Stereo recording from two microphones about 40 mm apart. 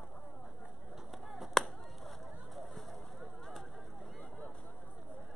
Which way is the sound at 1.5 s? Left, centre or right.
Centre.